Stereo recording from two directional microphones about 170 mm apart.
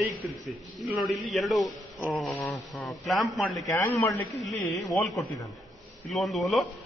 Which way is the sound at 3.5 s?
15° left (ahead or behind).